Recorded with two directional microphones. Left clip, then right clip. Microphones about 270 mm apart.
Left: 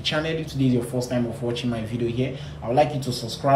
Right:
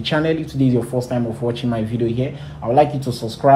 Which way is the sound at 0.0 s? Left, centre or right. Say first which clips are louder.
Right 6 dB; centre.